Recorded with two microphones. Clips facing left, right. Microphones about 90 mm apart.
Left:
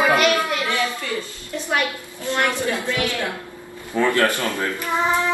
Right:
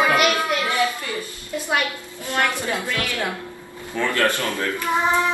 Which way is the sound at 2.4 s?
20° left (ahead or behind).